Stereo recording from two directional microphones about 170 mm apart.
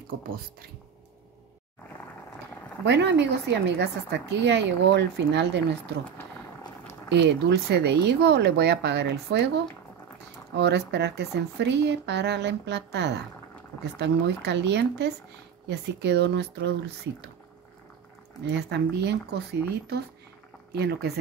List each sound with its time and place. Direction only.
2.8 s speech: 90° right
7.1 s speech: 90° right
10.5 s speech: 90° right
18.5 s speech: 85° right
20.7 s speech: 75° right (ahead or behind)